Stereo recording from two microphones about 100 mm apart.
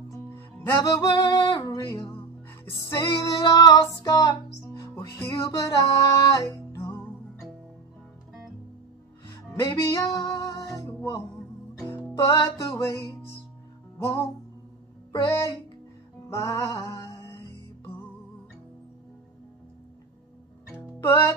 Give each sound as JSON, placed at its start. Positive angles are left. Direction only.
{"t": 0.1, "sound": "music", "side_deg": 20}
{"t": 0.8, "sound": "music", "side_deg": 35}
{"t": 4.8, "sound": "music", "side_deg": 25}
{"t": 5.3, "sound": "music", "side_deg": 35}
{"t": 9.3, "sound": "music", "side_deg": 30}
{"t": 11.8, "sound": "music", "side_deg": 25}
{"t": 12.3, "sound": "music", "side_deg": 35}
{"t": 15.1, "sound": "music", "side_deg": 35}
{"t": 21.1, "sound": "music", "side_deg": 30}